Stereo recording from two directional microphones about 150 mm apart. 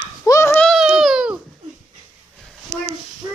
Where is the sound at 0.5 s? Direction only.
5° left (ahead or behind).